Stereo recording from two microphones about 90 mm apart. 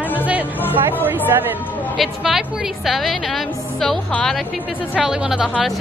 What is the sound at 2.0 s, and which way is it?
A woman's voice, 5° right (ahead or behind).